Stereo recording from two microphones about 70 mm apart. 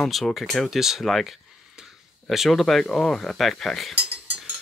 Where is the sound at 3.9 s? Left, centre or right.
Right.